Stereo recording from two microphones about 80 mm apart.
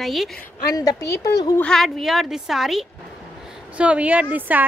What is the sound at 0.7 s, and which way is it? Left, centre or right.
Speech, left.